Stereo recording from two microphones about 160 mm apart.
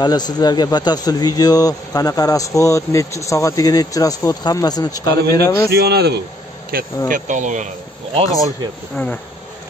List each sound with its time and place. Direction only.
0.0 s speech: 25° left (ahead or behind)
5.7 s speech: 85° right
6.7 s speech: 65° right (ahead or behind)
7.1 s speech: 50° right (ahead or behind)
8.9 s insect: 10° left (ahead or behind)